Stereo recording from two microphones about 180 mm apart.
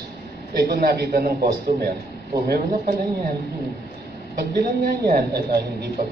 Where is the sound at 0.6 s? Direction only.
60° right (ahead or behind).